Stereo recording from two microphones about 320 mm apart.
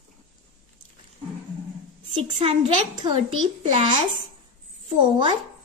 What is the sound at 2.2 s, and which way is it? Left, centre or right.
Speech, centre.